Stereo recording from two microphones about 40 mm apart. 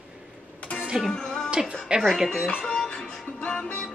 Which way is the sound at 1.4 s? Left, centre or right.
Centre.